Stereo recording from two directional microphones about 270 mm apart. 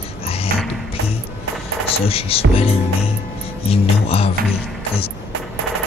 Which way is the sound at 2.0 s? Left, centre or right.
Left.